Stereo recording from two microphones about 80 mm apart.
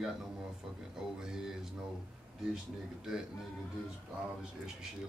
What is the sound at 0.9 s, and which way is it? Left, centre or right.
Speech, centre.